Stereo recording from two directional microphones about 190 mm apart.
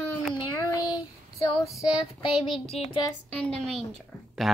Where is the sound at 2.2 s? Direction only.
30° left (ahead or behind).